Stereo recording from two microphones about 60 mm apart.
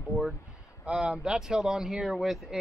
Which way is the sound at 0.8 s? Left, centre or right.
Centre.